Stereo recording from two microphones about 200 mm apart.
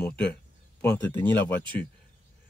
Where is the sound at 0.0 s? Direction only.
5° left (ahead or behind).